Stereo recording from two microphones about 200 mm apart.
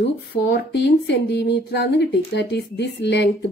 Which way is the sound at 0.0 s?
60° left (ahead or behind).